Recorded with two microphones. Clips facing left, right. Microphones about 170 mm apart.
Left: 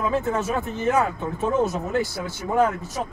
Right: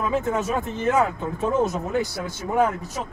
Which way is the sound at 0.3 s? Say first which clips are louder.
Even; 15° right (ahead or behind).